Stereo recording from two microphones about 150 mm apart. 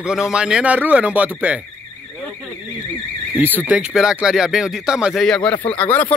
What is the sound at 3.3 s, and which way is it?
Speech, 10° right (ahead or behind).